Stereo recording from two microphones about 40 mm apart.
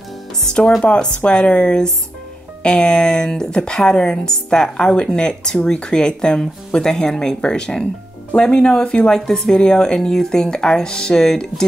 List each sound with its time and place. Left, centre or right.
0.4 s speech: centre